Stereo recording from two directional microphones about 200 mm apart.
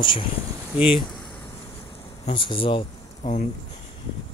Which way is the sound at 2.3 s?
25° left (ahead or behind).